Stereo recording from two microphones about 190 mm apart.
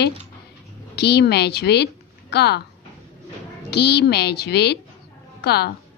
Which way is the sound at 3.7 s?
60° left (ahead or behind).